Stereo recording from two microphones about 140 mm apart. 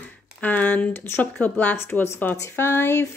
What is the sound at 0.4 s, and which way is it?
Speech, 10° left (ahead or behind).